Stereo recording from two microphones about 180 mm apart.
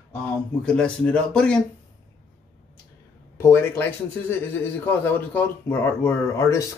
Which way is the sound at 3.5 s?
15° left (ahead or behind).